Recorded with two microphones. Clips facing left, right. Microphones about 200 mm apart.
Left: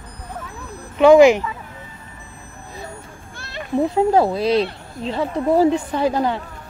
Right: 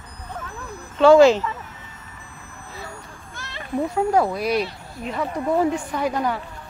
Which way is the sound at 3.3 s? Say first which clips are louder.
Left 4 dB; 30° left (ahead or behind).